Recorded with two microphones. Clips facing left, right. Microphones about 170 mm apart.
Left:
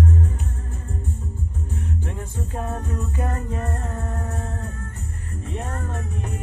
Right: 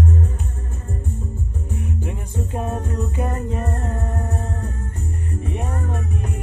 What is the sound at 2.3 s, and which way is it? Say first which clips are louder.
Music: right 5 dB; 20° right (ahead or behind).